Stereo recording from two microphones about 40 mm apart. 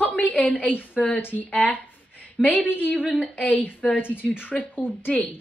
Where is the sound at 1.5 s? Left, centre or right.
Left.